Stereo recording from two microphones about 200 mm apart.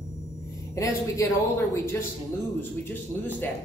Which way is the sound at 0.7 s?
15° left (ahead or behind).